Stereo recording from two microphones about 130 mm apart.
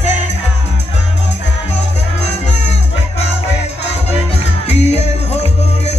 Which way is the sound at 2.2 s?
55° left (ahead or behind).